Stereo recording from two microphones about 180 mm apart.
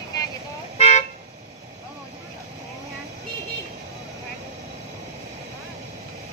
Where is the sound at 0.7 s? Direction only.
35° left (ahead or behind).